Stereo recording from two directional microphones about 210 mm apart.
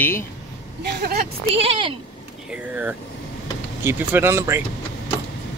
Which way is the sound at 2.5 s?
5° right (ahead or behind).